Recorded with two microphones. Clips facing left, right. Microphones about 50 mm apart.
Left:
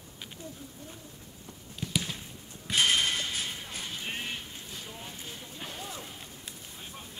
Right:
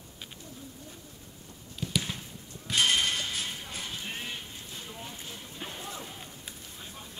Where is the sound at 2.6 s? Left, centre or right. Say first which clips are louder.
Even; centre.